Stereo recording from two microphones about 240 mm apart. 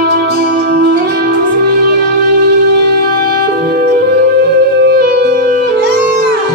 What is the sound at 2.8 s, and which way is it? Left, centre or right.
Music, right.